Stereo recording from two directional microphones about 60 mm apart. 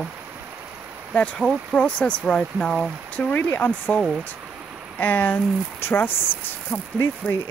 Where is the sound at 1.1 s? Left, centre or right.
Left.